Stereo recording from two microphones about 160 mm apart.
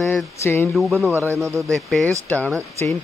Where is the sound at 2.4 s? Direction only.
15° right (ahead or behind).